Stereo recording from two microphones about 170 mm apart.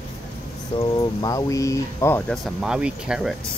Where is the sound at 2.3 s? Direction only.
Centre (ahead or behind).